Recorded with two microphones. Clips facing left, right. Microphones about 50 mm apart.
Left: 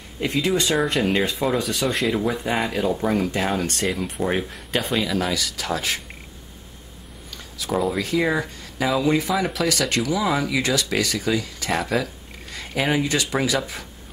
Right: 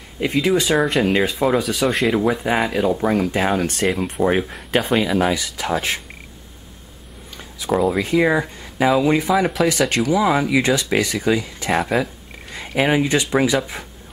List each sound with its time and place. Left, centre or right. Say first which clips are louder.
0.2 s speech: right 4 dB; centre
4.0 s speech: right 5 dB; right
7.3 s a sound: right 4 dB; centre
8.0 s speech: right 5 dB; right
9.3 s speech: right 5 dB; centre
10.1 s speech: right 7 dB; centre